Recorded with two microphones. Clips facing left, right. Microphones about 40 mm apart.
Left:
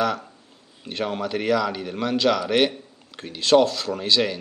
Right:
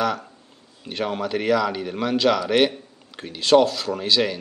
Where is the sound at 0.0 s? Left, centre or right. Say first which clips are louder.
Even; centre.